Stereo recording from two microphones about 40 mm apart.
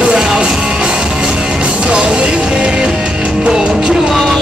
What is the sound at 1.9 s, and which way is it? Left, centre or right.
Music, right.